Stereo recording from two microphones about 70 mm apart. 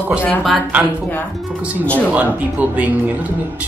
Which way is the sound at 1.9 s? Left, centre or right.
Right.